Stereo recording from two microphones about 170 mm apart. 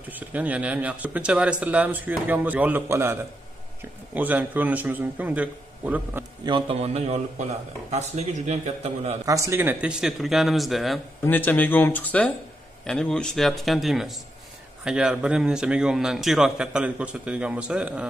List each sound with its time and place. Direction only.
0.1 s speech: 10° right (ahead or behind)
6.4 s a man's voice: 30° right (ahead or behind)
9.2 s a man's voice: 20° right (ahead or behind); by 11.0 s centre (ahead or behind)
11.2 s a man's voice: 10° left (ahead or behind); by 18.0 s 5° right (ahead or behind)